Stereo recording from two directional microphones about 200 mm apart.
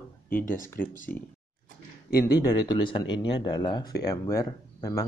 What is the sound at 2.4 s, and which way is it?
Speech, 20° left (ahead or behind).